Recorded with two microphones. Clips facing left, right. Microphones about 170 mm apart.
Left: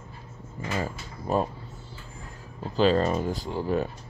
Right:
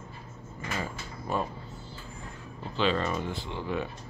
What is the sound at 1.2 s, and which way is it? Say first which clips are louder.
Speech: left 5 dB; 35° left (ahead or behind).